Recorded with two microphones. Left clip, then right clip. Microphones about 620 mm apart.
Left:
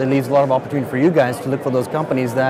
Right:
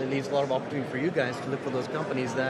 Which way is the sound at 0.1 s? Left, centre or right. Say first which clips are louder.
Left 12 dB; centre.